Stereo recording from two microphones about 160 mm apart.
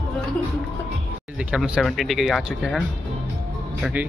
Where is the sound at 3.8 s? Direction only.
10° right (ahead or behind).